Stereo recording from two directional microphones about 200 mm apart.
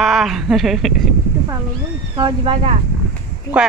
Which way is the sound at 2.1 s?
25° right (ahead or behind).